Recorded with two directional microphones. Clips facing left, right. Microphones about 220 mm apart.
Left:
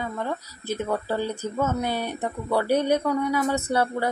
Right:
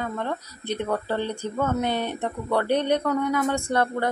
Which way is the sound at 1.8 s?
20° right (ahead or behind).